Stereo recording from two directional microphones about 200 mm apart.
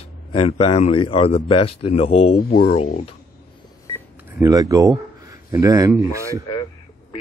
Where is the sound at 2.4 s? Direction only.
50° left (ahead or behind).